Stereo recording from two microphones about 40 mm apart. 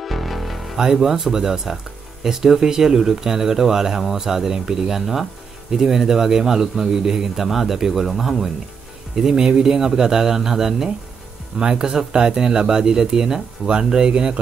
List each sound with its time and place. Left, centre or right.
0.0 s music: centre
0.7 s a man's voice: centre